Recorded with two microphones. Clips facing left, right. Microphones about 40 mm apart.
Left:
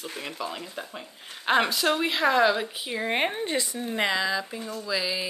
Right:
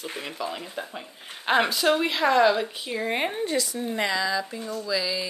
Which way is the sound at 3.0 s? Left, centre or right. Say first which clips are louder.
Even; left.